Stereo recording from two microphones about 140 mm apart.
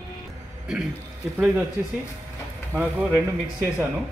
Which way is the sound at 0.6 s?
5° right (ahead or behind).